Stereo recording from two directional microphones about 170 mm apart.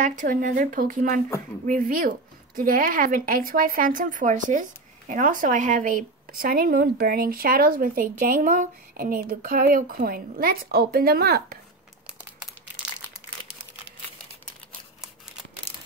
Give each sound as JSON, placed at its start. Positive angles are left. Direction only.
{"t": 0.0, "sound": "a woman's voice", "side_deg": -45}